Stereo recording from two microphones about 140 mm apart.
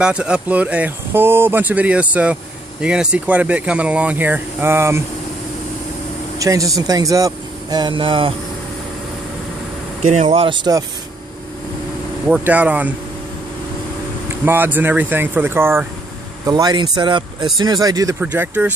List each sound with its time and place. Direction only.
0.0 s speech: 5° right (ahead or behind)
6.3 s speech: 25° right (ahead or behind)
10.2 s speech: 40° right (ahead or behind)
12.3 s speech: 10° right (ahead or behind)
14.4 s speech: 15° right (ahead or behind)
16.4 s speech: 30° right (ahead or behind)
18.2 s speech: 10° right (ahead or behind)